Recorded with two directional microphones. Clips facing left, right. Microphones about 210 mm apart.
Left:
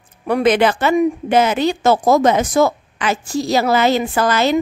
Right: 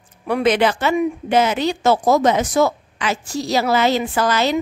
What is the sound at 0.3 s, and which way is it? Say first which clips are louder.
A woman's voice: left 2 dB; 50° left (ahead or behind).